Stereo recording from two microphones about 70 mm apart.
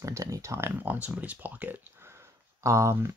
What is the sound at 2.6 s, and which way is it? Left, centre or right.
Speech, right.